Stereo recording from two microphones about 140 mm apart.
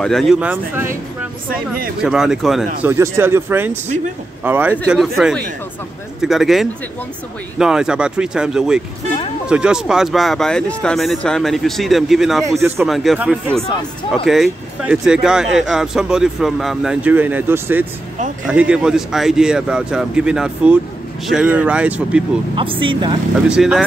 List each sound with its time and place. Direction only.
0.0 s speech: centre (ahead or behind)
2.0 s speech: 5° right (ahead or behind)
2.9 s speech: 15° right (ahead or behind)
4.9 s speech: centre (ahead or behind)
22.6 s speech: 35° right (ahead or behind)
23.5 s speech: 5° right (ahead or behind)